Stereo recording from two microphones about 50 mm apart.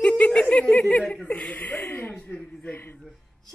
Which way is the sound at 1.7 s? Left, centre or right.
Left.